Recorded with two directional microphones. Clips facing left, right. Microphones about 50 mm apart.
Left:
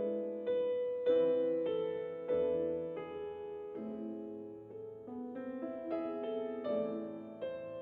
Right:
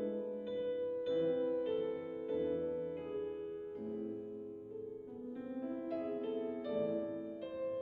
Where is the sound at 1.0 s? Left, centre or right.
Centre.